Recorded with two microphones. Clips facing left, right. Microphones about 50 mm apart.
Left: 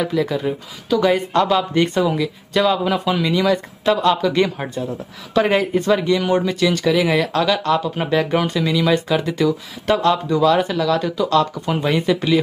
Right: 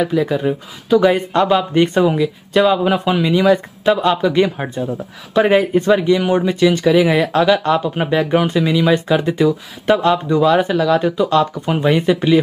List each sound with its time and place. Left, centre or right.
0.0 s speech: centre